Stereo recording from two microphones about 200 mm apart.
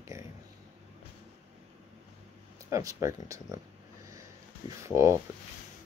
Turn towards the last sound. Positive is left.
turn(degrees=-15)  # may be behind; listen again after turning